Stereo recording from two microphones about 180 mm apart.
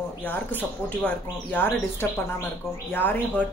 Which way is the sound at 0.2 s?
10° left (ahead or behind).